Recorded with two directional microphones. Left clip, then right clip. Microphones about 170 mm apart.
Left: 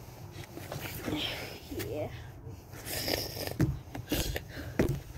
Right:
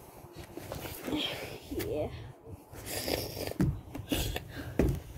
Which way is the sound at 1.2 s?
50° left (ahead or behind).